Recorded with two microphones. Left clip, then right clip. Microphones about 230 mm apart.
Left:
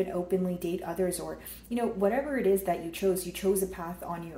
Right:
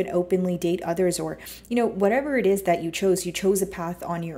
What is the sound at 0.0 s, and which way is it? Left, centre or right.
Speech, right.